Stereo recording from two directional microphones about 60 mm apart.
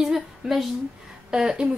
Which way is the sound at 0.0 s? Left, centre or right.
Centre.